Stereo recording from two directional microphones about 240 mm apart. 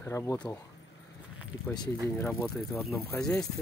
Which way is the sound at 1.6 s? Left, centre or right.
Centre.